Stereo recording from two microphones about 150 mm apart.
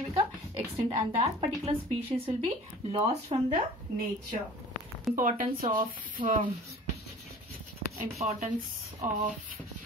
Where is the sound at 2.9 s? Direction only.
40° right (ahead or behind).